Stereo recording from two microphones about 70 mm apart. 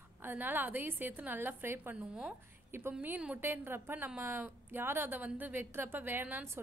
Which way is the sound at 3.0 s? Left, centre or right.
Right.